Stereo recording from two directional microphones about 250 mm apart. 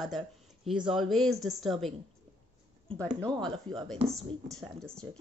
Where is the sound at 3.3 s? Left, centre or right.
Centre.